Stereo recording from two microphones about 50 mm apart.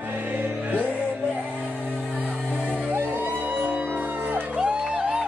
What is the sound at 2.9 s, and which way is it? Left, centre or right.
Music, right.